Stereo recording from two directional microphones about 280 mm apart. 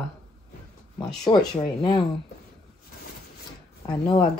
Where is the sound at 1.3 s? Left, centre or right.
Centre.